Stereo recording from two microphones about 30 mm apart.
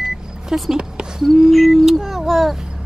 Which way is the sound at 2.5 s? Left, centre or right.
Centre.